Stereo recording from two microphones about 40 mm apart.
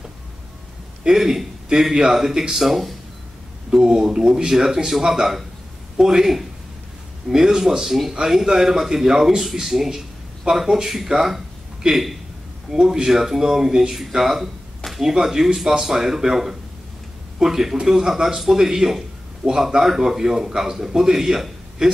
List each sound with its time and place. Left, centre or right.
1.0 s speech: centre
12.7 s speech: centre